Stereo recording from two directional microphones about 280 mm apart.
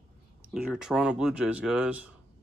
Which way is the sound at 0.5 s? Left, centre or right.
Centre.